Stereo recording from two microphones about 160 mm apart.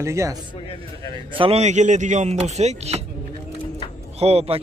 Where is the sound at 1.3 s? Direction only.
35° right (ahead or behind).